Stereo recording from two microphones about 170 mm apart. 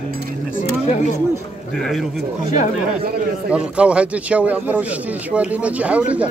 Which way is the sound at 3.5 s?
5° right (ahead or behind).